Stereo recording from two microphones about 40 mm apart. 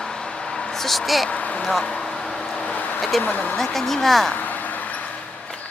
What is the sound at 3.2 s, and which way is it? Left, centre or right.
Speech, left.